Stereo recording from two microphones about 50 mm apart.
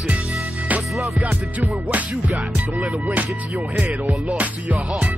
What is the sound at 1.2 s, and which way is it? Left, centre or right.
Music, right.